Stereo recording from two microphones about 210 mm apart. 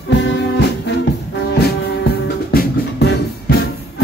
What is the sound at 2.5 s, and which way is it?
Music, 45° left (ahead or behind).